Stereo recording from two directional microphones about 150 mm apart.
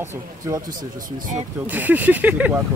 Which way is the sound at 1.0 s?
65° right (ahead or behind).